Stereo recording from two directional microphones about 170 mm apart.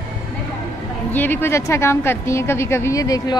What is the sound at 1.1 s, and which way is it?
A woman's voice, 10° left (ahead or behind).